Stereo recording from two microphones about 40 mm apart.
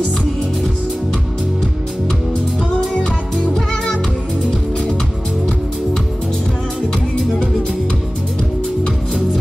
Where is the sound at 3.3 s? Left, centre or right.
Centre.